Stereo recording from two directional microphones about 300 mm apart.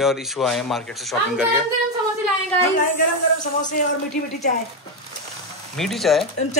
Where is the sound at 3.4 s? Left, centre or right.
Left.